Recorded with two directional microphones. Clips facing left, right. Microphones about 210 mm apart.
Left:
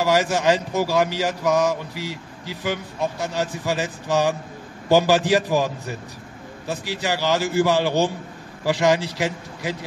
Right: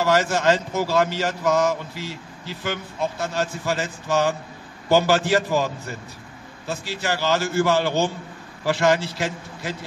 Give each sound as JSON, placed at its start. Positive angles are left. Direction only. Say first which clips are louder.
{"t": 0.0, "sound": "speech", "louder": "even", "side_deg": 15}